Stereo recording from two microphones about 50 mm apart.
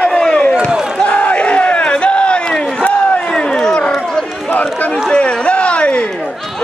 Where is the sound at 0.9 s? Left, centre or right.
Left.